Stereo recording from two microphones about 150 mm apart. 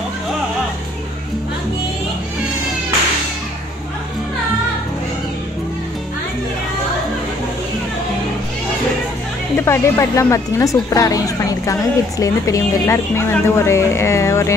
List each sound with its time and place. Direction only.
9.7 s a woman's voice: 20° left (ahead or behind)